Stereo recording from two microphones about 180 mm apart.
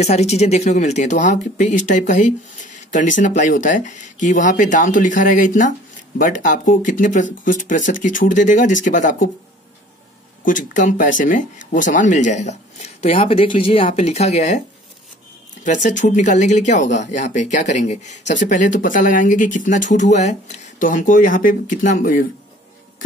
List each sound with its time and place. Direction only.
0.0 s speech: 35° left (ahead or behind)
10.4 s speech: 45° left (ahead or behind)
15.6 s speech: 45° left (ahead or behind)